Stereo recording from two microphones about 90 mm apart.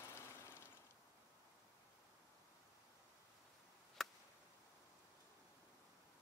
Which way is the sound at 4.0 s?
Centre (ahead or behind).